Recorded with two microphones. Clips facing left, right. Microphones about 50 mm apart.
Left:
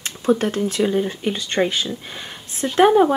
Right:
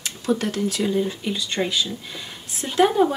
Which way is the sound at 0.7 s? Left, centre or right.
Left.